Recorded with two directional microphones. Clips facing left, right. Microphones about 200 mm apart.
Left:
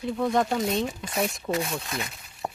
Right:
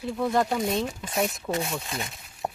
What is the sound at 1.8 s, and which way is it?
Speech, 25° right (ahead or behind).